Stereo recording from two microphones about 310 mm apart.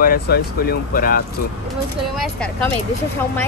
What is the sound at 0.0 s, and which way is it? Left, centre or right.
Speech, left.